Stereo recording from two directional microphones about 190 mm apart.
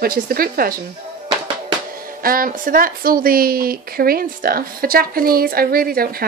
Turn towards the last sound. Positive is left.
turn(degrees=-50)  # may be behind; listen again after turning